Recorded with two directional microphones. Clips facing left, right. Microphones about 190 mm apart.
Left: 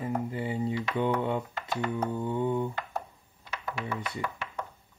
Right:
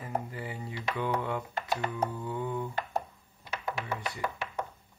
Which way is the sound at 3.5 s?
25° right (ahead or behind).